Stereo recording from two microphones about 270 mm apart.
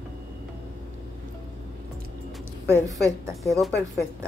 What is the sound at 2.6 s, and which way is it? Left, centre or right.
Speech, centre.